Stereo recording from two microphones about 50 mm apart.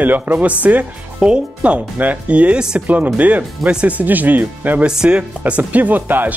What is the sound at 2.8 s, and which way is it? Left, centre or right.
Speech, right.